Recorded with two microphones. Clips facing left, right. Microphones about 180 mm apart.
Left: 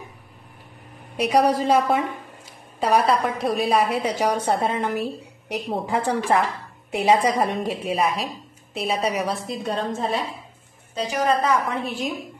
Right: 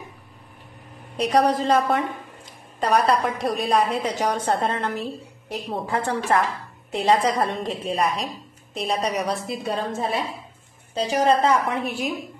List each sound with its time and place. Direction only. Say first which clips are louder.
1.1 s a woman's voice: left 1 dB; 10° left (ahead or behind)
11.1 s a woman's voice: right 2 dB; 30° right (ahead or behind)
11.8 s a woman's voice: even; 10° right (ahead or behind)